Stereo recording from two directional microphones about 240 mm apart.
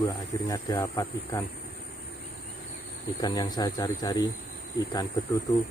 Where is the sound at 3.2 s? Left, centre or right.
Centre.